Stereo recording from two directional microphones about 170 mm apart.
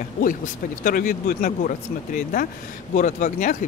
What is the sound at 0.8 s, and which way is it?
Speech, 55° left (ahead or behind).